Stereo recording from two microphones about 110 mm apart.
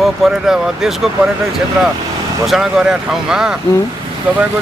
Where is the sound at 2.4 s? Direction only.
Centre (ahead or behind).